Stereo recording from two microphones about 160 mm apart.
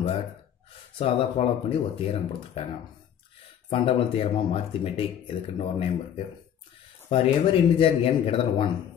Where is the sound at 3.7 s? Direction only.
40° left (ahead or behind).